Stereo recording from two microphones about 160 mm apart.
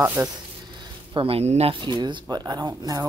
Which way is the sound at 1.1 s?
35° right (ahead or behind).